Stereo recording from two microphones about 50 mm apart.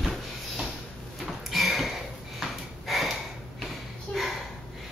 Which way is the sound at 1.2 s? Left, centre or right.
Centre.